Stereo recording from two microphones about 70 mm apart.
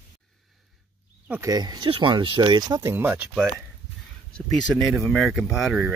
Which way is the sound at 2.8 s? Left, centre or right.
Right.